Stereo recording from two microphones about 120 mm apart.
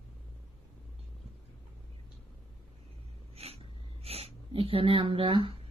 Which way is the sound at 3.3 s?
55° right (ahead or behind).